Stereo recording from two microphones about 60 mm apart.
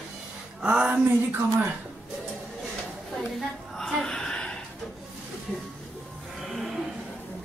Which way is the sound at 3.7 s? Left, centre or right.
Centre.